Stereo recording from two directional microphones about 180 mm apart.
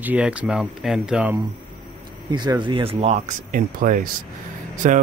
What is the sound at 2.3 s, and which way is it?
Speech, 25° right (ahead or behind).